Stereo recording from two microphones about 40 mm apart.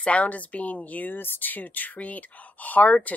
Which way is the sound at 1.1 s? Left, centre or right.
Left.